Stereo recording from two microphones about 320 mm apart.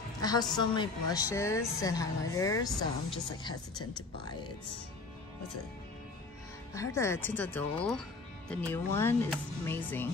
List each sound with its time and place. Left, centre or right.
0.2 s a sound: centre
0.6 s a woman's voice: centre
6.7 s a woman's voice: centre